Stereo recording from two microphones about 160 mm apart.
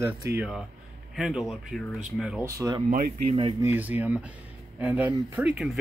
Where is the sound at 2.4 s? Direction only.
20° right (ahead or behind).